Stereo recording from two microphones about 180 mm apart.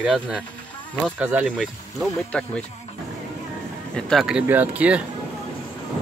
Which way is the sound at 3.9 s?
5° left (ahead or behind).